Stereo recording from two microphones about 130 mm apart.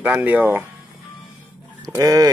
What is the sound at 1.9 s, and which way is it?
Speech, 25° right (ahead or behind).